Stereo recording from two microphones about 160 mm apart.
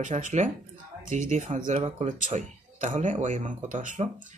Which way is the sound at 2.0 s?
50° right (ahead or behind).